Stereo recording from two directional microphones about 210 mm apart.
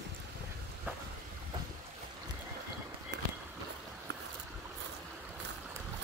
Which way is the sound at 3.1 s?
55° right (ahead or behind).